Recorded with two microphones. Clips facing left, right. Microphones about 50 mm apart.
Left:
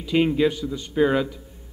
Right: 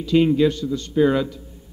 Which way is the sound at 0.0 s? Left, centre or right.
Centre.